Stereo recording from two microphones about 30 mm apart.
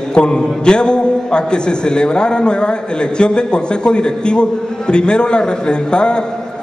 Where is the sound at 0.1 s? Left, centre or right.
Left.